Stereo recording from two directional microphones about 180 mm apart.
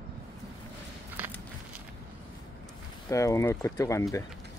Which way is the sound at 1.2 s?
10° right (ahead or behind).